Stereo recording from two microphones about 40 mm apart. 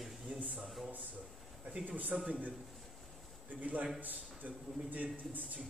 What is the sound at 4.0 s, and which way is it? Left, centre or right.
A man's voice, right.